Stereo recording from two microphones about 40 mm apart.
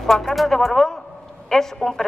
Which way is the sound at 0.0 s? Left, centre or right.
Centre.